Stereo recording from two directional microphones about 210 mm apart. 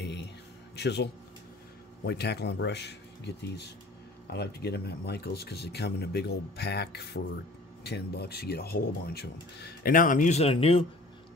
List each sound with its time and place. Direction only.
0.0 s music: 55° left (ahead or behind)
0.7 s speech: 50° left (ahead or behind); by 10.9 s 25° left (ahead or behind)